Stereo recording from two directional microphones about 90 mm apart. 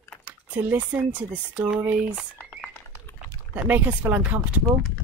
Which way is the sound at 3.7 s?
25° right (ahead or behind).